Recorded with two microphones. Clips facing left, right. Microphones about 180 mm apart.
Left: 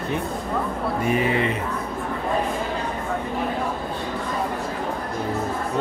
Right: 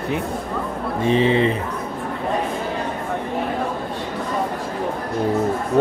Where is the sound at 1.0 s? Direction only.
25° right (ahead or behind).